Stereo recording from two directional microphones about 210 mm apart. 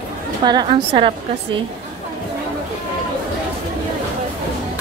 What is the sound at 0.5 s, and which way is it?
Speech, 20° right (ahead or behind).